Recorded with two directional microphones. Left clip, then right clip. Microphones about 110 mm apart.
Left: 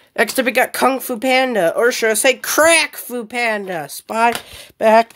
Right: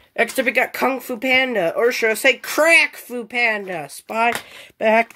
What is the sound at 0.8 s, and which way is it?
Speech, 15° left (ahead or behind).